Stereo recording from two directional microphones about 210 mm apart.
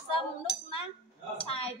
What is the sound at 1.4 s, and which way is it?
Speech, 25° left (ahead or behind).